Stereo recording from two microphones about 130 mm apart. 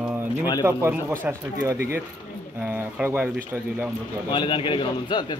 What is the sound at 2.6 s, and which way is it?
Speech, 15° right (ahead or behind).